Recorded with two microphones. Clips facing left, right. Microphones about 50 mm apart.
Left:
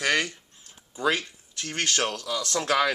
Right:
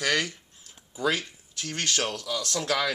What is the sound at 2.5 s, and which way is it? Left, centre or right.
Speech, left.